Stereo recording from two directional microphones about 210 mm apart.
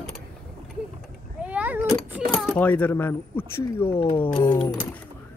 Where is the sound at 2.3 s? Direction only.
Centre (ahead or behind); by 4.7 s 20° left (ahead or behind).